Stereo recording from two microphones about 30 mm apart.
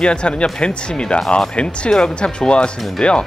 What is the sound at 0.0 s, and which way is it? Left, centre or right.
Speech, left.